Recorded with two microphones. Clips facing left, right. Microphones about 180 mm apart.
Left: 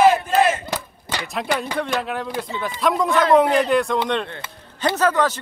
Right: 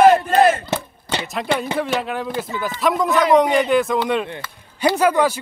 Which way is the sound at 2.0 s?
Centre (ahead or behind).